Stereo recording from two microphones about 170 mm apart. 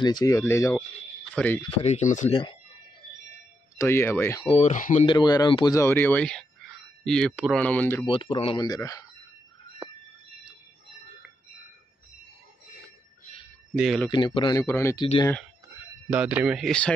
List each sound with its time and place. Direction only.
0.0 s speech: 25° left (ahead or behind); by 1.6 s 10° left (ahead or behind)
1.8 s speech: 40° left (ahead or behind)
3.7 s speech: 15° left (ahead or behind)
4.4 s speech: 35° left (ahead or behind)
5.0 s speech: 25° left (ahead or behind)
5.8 s speech: 15° left (ahead or behind)
8.1 s speech: 30° left (ahead or behind)
13.7 s speech: centre (ahead or behind)
14.1 s speech: 25° left (ahead or behind)
16.1 s speech: 10° right (ahead or behind)